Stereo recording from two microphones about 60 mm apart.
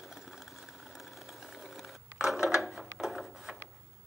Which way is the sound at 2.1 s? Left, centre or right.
Centre.